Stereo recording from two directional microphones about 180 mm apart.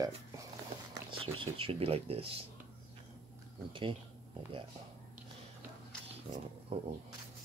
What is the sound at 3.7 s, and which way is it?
Speech, 25° right (ahead or behind).